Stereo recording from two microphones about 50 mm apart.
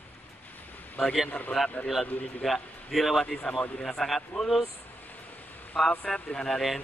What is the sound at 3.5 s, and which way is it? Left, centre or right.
Speech, centre.